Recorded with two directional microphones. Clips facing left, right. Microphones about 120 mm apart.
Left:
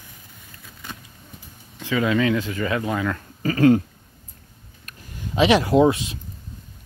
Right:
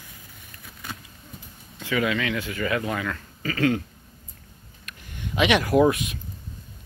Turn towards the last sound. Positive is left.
turn(degrees=30)  # may be behind; listen again after turning